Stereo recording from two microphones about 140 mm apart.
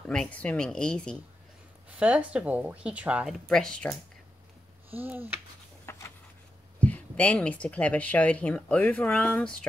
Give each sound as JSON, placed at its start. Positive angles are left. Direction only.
{"t": 0.1, "sound": "speech", "side_deg": 5}
{"t": 2.0, "sound": "speech", "side_deg": -10}
{"t": 3.4, "sound": "speech", "side_deg": 5}
{"t": 4.9, "sound": "speech", "side_deg": -15}
{"t": 5.9, "sound": "a sound", "side_deg": 20}
{"t": 6.8, "sound": "speech", "side_deg": 10}